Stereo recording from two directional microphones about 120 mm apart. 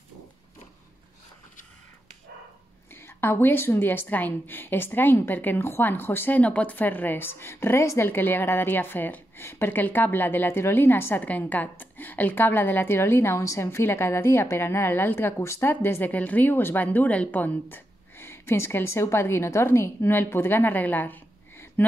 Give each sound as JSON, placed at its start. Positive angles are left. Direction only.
{"t": 2.9, "sound": "a woman's voice", "side_deg": 20}